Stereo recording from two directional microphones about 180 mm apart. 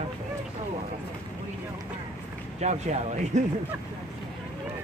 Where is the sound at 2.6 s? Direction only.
40° right (ahead or behind).